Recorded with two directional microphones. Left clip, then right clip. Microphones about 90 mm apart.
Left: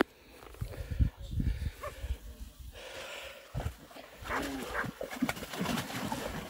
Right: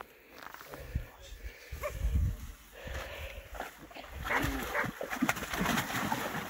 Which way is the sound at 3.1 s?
30° left (ahead or behind).